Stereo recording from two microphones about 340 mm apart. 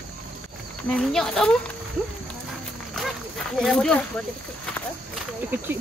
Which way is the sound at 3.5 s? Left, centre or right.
Centre.